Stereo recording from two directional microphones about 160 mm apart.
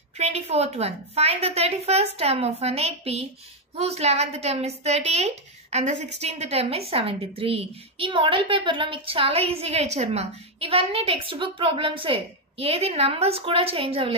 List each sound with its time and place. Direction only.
0.2 s a woman's voice: 40° right (ahead or behind)